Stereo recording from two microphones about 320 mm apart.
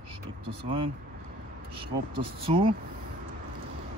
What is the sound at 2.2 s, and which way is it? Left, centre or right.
Speech, centre.